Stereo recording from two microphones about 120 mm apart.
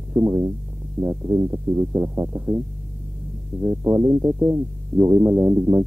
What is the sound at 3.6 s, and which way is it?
Speech, 20° right (ahead or behind).